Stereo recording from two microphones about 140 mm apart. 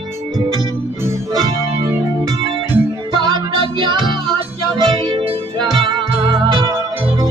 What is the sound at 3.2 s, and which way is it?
Music, 35° right (ahead or behind).